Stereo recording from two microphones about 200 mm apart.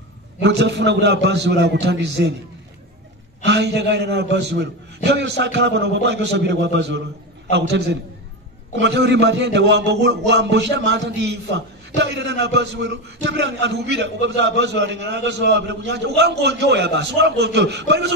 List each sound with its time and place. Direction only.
0.4 s a man's voice: 60° right (ahead or behind)
3.4 s a man's voice: 60° right (ahead or behind)